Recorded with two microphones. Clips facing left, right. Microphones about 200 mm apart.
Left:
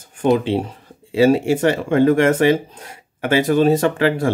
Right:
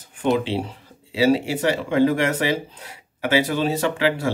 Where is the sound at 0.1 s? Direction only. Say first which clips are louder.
Left 4 dB; 45° left (ahead or behind).